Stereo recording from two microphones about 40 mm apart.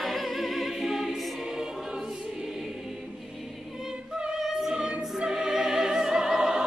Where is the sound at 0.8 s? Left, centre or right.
Centre.